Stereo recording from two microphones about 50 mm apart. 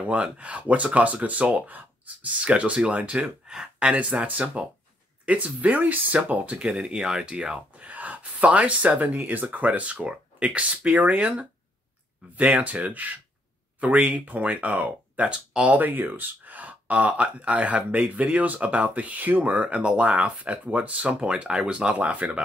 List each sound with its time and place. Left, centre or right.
0.0 s speech: right
6.8 s speech: centre
7.9 s speech: right